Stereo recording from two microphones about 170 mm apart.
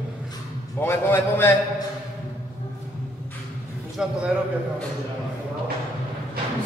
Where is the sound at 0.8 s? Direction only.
15° left (ahead or behind).